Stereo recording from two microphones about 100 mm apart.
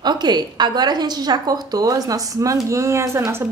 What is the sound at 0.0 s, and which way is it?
A woman's voice, 45° right (ahead or behind).